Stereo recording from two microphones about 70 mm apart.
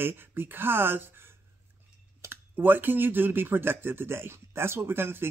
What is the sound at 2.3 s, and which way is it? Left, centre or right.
Speech, right.